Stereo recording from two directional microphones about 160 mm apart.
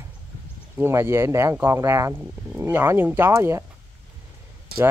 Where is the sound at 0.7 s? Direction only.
15° right (ahead or behind).